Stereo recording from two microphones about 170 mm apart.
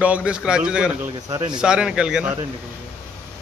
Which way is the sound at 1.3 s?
20° right (ahead or behind).